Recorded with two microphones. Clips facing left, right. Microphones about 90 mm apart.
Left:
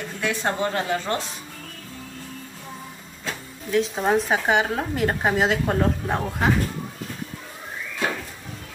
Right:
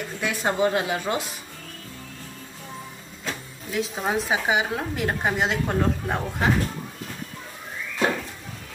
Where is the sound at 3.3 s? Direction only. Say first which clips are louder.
Left 4 dB; centre (ahead or behind).